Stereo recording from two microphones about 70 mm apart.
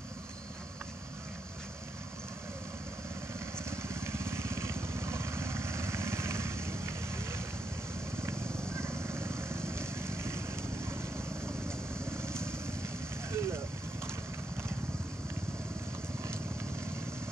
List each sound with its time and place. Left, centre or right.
3.5 s vehicle: right